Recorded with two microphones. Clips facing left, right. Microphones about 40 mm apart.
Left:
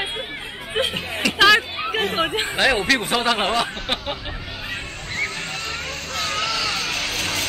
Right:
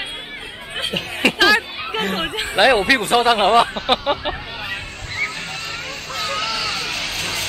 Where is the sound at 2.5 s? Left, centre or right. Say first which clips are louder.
Right 6 dB; centre.